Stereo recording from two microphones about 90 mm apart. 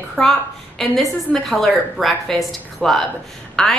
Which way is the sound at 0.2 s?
5° left (ahead or behind).